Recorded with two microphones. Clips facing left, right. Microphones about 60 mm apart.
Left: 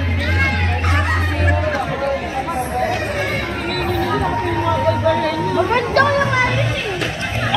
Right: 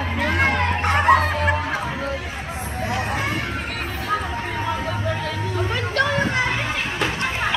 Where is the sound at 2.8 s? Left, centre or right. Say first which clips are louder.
Left 4 dB; left.